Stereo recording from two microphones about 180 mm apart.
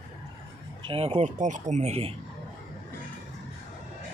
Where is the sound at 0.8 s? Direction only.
30° right (ahead or behind).